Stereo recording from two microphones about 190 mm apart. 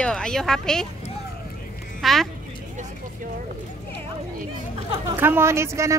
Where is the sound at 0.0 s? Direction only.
5° left (ahead or behind).